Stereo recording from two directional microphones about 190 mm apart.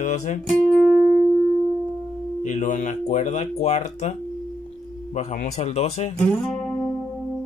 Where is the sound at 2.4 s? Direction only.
40° left (ahead or behind).